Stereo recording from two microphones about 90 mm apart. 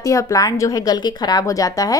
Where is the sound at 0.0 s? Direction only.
40° left (ahead or behind).